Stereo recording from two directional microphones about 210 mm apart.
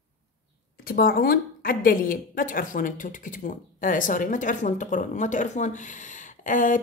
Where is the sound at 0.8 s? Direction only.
45° left (ahead or behind).